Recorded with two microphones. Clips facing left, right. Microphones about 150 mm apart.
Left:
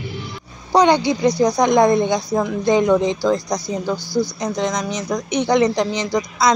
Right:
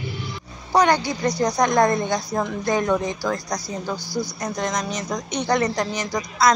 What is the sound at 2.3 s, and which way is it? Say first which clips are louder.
Speech: left 5 dB; 5° left (ahead or behind).